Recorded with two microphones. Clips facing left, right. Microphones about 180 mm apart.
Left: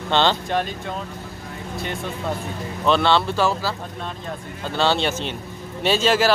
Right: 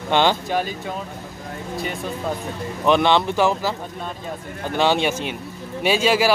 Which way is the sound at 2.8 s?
15° right (ahead or behind).